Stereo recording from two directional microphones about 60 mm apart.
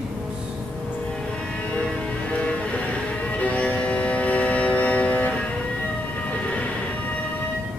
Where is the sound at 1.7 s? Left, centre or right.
Left.